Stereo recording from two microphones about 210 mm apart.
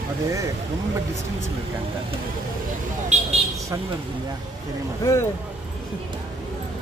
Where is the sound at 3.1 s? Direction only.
35° right (ahead or behind).